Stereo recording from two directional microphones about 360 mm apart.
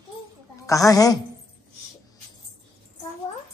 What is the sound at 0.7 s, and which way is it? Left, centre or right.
Speech, centre.